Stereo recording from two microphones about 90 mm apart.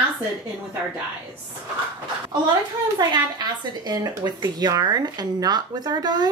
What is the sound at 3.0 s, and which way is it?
Speech, 50° right (ahead or behind).